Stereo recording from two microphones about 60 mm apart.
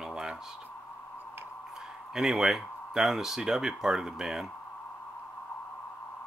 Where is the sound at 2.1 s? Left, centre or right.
Centre.